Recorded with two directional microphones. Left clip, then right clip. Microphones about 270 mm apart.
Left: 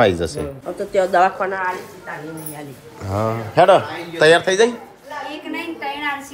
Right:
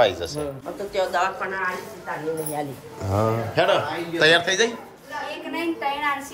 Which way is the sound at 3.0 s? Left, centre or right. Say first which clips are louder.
Left 1 dB; centre.